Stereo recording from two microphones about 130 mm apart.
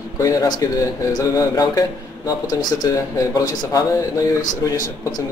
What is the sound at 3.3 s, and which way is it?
Speech, 25° left (ahead or behind).